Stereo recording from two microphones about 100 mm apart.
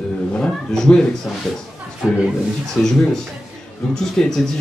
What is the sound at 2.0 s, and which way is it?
Speech, 5° right (ahead or behind).